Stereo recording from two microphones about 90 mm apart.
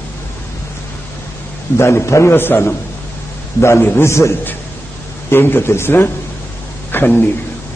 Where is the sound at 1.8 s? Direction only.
30° left (ahead or behind).